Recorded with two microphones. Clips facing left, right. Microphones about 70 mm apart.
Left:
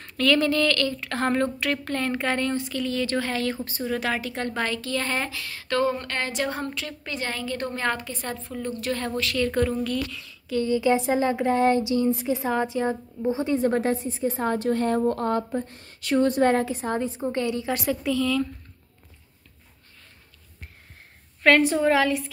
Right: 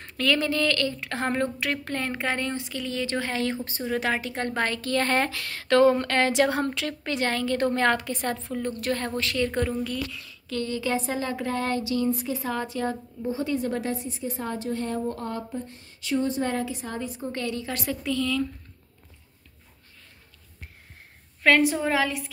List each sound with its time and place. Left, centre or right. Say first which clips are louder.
0.0 s a woman's voice: left 3 dB; centre; by 8.9 s right
8.9 s a woman's voice: left 3 dB; right
9.5 s a woman's voice: left 3 dB; centre
10.5 s speech: left 6 dB; centre
17.8 s speech: left 2 dB; centre
21.4 s a woman's voice: left 2 dB; centre